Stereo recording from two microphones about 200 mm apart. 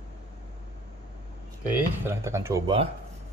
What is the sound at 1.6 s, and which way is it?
Speech, 10° right (ahead or behind).